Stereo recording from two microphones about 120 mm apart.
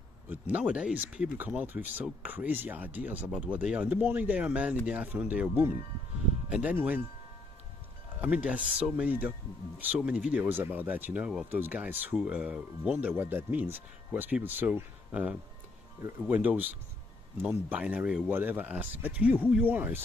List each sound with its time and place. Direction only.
0.3 s speech: 10° right (ahead or behind)
6.5 s speech: 15° right (ahead or behind)
8.2 s speech: 10° right (ahead or behind)